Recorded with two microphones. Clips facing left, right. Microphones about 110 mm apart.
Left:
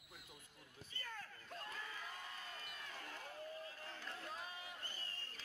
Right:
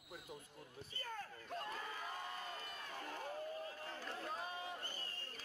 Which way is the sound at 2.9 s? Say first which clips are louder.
Right 8 dB; 35° right (ahead or behind).